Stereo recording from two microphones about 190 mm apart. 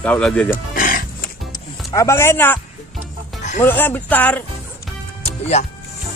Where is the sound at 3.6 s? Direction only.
10° left (ahead or behind).